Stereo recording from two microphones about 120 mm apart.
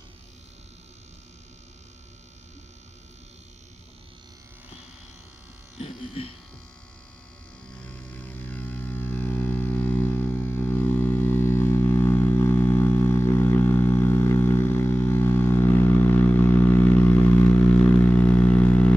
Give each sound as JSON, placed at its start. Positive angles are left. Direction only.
{"t": 5.8, "sound": "electric shaver", "side_deg": 50}
{"t": 7.7, "sound": "music", "side_deg": 10}